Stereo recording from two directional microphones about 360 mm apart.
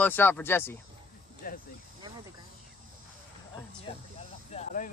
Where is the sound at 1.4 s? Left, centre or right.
Left.